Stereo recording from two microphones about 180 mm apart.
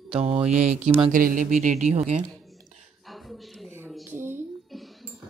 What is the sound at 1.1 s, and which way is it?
Speech, 50° right (ahead or behind).